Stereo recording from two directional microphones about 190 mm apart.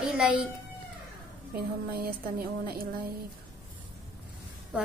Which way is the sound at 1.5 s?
55° right (ahead or behind).